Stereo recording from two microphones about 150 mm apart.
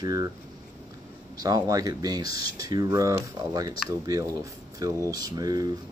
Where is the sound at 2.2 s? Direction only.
90° left.